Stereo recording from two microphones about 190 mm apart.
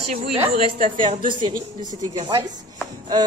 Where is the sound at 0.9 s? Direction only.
25° right (ahead or behind).